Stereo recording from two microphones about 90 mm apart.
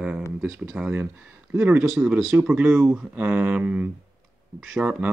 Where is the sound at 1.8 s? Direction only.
5° right (ahead or behind).